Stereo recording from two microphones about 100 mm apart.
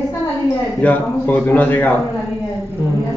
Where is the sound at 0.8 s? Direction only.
15° left (ahead or behind).